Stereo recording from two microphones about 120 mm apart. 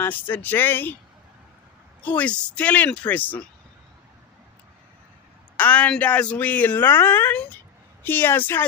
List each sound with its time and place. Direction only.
0.0 s a woman's voice: 15° left (ahead or behind)
2.0 s a woman's voice: 10° left (ahead or behind)
5.6 s a woman's voice: 10° left (ahead or behind)